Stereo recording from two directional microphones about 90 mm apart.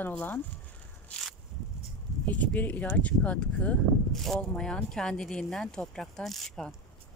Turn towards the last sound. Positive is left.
turn(degrees=5)  # may be behind; listen again after turning